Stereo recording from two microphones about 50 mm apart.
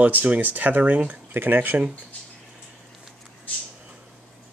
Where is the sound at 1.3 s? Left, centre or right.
Right.